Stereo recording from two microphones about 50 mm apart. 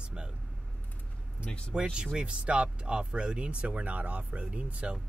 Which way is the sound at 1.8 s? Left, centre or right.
Right.